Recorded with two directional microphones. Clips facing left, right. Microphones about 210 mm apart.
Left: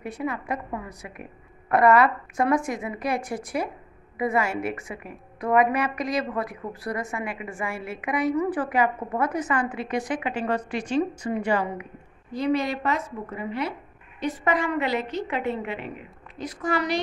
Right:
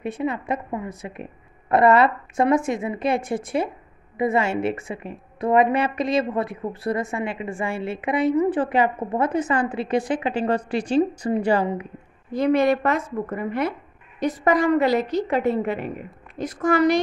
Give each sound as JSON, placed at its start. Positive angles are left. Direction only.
{"t": 0.0, "sound": "a woman's voice", "side_deg": -25}
{"t": 12.3, "sound": "speech", "side_deg": -55}
{"t": 14.2, "sound": "a woman's voice", "side_deg": -40}